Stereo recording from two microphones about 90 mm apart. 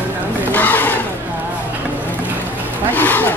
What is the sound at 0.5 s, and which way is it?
Wild animals, 20° left (ahead or behind).